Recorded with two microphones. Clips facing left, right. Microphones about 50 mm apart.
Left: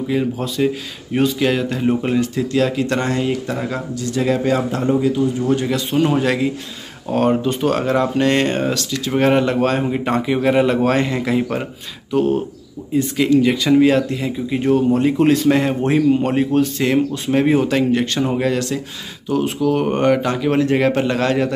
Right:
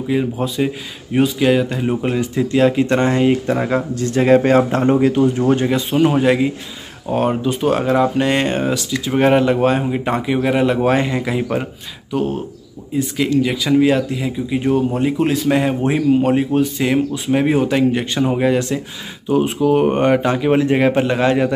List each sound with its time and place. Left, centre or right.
0.1 s speech: centre
2.3 s speech: right
3.9 s speech: right
5.7 s speech: centre